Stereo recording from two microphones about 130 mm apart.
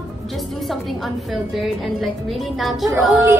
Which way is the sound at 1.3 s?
Centre (ahead or behind).